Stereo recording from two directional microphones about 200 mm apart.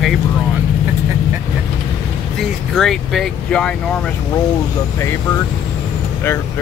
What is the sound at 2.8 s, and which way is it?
Speech, centre (ahead or behind).